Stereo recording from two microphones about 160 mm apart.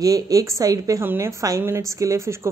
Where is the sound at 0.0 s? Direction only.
20° right (ahead or behind).